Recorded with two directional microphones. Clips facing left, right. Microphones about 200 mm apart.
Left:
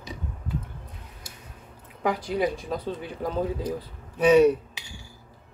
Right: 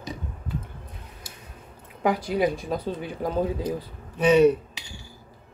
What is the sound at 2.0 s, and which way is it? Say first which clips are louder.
Speech: right 2 dB; 10° right (ahead or behind).